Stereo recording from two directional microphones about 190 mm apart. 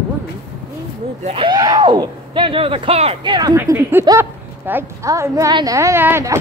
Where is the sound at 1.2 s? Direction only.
30° right (ahead or behind).